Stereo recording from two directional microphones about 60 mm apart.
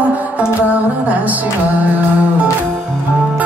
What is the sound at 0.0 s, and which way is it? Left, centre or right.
Music, right.